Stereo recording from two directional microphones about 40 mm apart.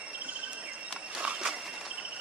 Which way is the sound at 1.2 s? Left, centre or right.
Right.